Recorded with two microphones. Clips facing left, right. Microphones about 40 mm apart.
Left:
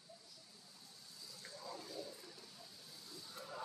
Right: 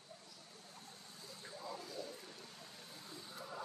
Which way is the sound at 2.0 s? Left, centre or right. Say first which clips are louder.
Right 3 dB; right.